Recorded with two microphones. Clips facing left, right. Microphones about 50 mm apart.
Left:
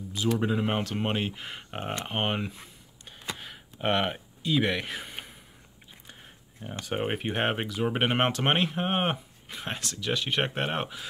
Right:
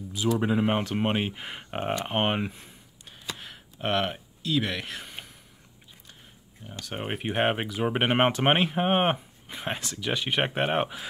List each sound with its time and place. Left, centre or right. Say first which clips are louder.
0.4 s speech: right 3 dB; centre
3.1 s gasp: left 1 dB; centre
3.8 s speech: even; centre
6.6 s speech: left 3 dB; left
6.9 s speech: left 2 dB; centre